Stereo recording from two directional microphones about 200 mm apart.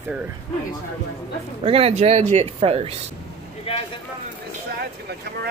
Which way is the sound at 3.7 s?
30° left (ahead or behind).